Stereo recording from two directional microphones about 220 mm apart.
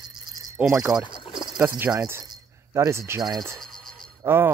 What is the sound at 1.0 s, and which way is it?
Rowboat, 20° left (ahead or behind).